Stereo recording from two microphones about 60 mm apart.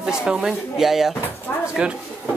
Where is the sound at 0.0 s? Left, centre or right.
Centre.